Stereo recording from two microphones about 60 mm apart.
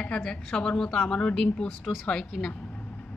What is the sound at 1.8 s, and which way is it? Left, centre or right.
Speech, centre.